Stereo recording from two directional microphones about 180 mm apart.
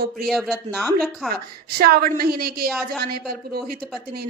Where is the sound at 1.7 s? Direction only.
60° right (ahead or behind).